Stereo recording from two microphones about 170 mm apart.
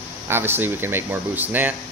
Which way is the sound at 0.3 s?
15° right (ahead or behind).